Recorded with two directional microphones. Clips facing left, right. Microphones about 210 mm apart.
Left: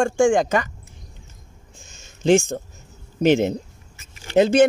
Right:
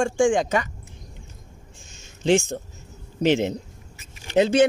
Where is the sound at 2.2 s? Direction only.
45° left (ahead or behind).